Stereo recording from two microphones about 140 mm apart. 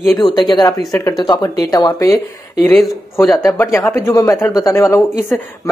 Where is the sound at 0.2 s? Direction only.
30° left (ahead or behind).